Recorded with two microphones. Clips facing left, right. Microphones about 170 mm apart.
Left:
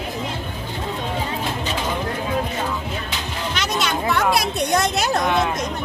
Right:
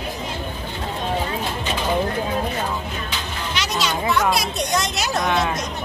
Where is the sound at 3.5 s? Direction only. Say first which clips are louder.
Even; 55° left (ahead or behind).